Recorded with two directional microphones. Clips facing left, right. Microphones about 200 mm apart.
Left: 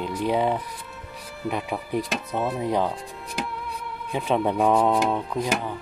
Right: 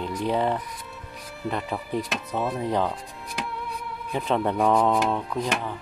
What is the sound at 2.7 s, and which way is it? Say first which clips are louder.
Music: left 1 dB; 5° left (ahead or behind).